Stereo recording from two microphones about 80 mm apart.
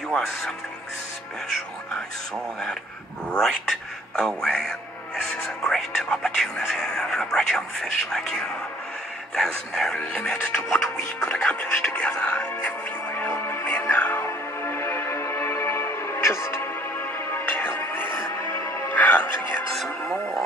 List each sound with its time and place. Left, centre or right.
3.3 s speech: centre
10.3 s music: left
19.7 s speech: centre